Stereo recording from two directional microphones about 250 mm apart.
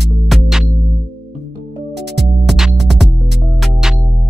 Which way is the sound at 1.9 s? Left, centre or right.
Right.